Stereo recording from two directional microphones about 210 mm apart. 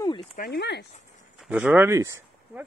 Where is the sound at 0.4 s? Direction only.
50° left (ahead or behind).